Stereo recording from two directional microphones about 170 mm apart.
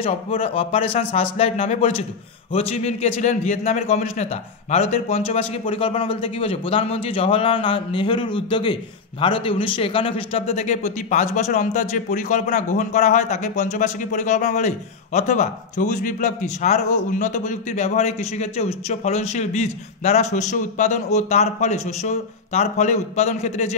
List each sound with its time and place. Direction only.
0.0 s a man's voice: 35° left (ahead or behind)